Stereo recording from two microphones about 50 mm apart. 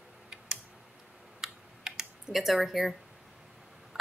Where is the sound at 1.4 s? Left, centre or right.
Centre.